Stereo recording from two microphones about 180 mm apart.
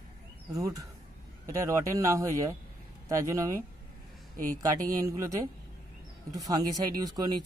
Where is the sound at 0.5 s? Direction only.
20° right (ahead or behind).